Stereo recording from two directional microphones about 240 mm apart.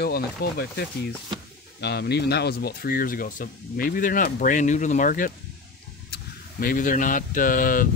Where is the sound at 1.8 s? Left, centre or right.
Left.